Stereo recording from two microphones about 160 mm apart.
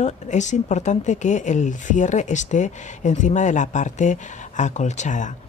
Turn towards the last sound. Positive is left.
turn(degrees=50)  # may be behind; listen again after turning